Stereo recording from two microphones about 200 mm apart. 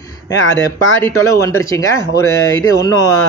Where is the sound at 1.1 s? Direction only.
15° left (ahead or behind).